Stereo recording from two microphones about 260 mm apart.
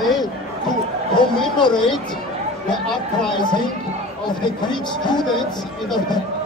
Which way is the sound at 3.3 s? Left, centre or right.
Centre.